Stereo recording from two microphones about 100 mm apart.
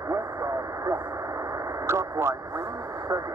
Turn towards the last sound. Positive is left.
turn(degrees=-30)  # may be behind; listen again after turning